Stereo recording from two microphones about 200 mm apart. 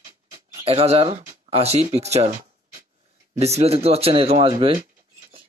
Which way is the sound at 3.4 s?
30° right (ahead or behind).